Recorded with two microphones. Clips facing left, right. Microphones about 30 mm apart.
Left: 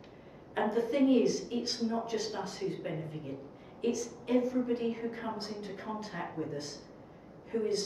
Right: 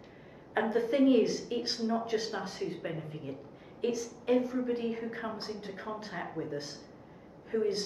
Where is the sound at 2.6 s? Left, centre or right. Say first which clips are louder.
Even; centre.